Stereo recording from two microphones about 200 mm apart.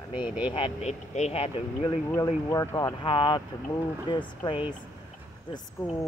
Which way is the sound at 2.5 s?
15° left (ahead or behind).